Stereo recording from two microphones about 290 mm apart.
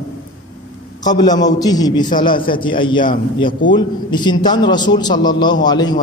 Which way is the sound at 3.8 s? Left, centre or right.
Centre.